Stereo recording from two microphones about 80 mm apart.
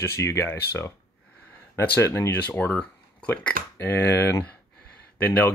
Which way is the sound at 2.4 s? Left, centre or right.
Centre.